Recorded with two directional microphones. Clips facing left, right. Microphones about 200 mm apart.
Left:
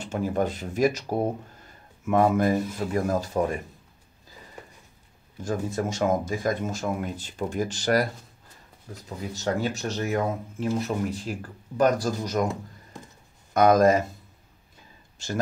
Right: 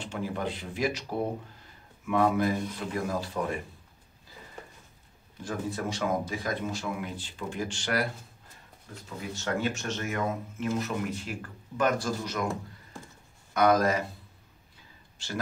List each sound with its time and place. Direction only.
0.0 s speech: 45° left (ahead or behind)
2.0 s speech: 45° left (ahead or behind)
5.4 s speech: 45° left (ahead or behind)
9.3 s speech: 35° left (ahead or behind)
13.5 s speech: 45° left (ahead or behind)